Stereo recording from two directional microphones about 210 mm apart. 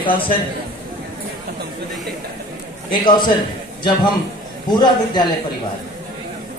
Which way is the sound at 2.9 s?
20° left (ahead or behind).